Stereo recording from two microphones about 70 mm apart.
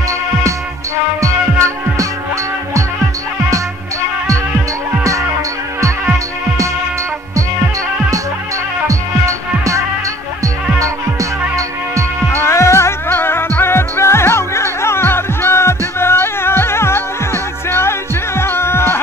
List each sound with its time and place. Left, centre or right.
1.2 s music: right
8.8 s music: right
10.8 s hum: right
12.4 s music: left